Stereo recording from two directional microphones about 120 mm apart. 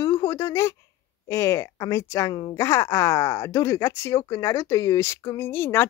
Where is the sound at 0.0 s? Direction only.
30° left (ahead or behind).